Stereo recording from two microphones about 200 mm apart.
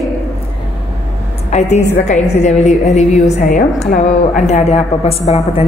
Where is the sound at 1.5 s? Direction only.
35° left (ahead or behind).